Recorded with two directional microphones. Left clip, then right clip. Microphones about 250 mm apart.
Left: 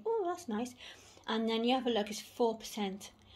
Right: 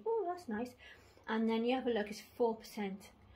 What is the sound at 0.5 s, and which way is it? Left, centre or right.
A woman's voice, left.